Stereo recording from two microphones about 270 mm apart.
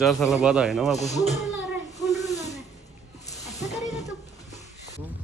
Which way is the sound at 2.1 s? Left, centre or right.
Centre.